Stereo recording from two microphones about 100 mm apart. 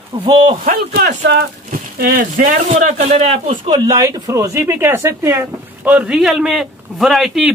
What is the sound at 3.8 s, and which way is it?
Speech, 35° right (ahead or behind).